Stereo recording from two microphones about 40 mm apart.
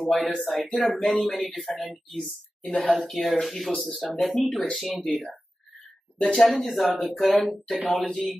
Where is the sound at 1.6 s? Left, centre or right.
Centre.